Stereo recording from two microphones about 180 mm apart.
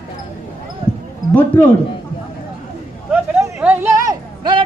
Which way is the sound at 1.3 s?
10° left (ahead or behind).